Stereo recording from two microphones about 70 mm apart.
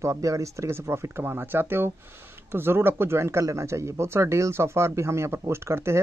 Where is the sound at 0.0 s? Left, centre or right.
Right.